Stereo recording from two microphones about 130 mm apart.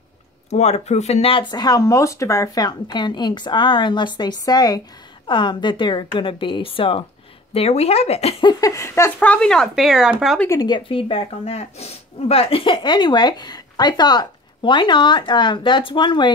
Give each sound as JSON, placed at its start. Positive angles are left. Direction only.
{"t": 0.5, "sound": "speech", "side_deg": 55}
{"t": 8.5, "sound": "speech", "side_deg": 25}
{"t": 10.5, "sound": "speech", "side_deg": 35}